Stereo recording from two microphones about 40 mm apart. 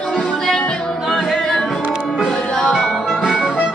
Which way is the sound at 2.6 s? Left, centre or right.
Centre.